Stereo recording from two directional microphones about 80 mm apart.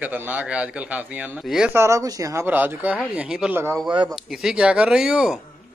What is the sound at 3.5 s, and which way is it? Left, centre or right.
Speech, right.